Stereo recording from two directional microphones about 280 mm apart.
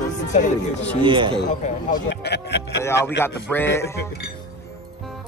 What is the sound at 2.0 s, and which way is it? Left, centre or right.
Speech, left.